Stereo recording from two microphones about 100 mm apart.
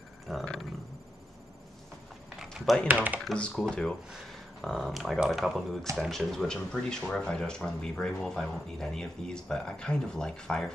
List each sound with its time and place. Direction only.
0.3 s a sound: centre (ahead or behind)
2.3 s typing: centre (ahead or behind)
2.9 s speech: 15° right (ahead or behind)
3.3 s speech: 10° left (ahead or behind)